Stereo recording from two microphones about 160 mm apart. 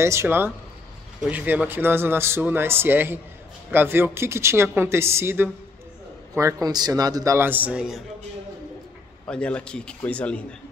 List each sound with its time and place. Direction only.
0.0 s speech: 15° right (ahead or behind)
9.3 s speech: 5° left (ahead or behind)